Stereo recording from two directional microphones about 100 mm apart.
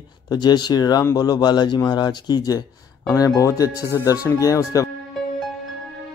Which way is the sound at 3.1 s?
35° left (ahead or behind).